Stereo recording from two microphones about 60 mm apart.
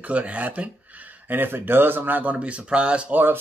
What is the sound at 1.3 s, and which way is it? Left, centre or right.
Speech, right.